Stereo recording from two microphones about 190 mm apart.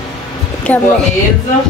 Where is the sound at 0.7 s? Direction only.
10° left (ahead or behind).